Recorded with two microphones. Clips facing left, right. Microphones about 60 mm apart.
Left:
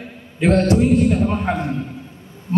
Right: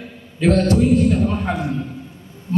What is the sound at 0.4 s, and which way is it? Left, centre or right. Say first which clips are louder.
A man's voice: even; left.